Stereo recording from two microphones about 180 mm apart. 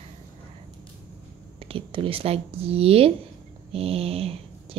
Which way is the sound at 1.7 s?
30° right (ahead or behind).